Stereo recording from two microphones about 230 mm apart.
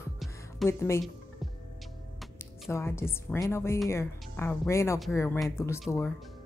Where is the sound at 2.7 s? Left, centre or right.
Centre.